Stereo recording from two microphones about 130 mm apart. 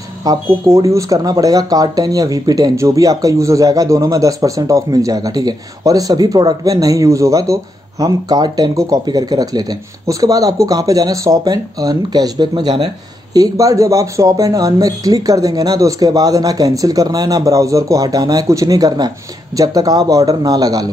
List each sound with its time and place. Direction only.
0.2 s speech: 25° right (ahead or behind)